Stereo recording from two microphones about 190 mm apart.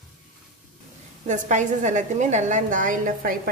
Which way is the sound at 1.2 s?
40° right (ahead or behind).